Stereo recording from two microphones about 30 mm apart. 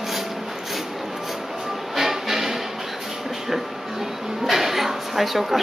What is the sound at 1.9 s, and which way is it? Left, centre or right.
Music, centre.